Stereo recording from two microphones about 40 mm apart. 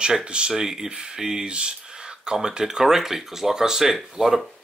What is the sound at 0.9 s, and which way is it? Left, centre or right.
Speech, right.